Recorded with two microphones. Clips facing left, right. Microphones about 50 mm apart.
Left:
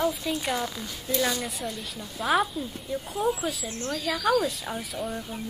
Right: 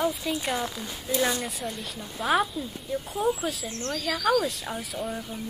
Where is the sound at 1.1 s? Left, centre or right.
Centre.